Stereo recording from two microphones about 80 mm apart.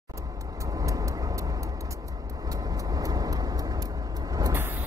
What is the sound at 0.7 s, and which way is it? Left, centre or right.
Vehicle, right.